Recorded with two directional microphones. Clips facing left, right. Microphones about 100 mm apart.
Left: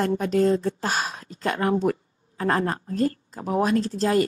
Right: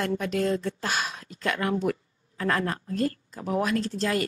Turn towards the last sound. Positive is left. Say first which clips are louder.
# left 5 dB
turn(degrees=35)  # may be behind; listen again after turning